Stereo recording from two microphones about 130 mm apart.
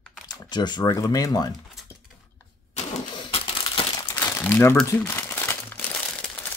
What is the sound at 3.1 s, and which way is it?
Typewriter, 40° left (ahead or behind).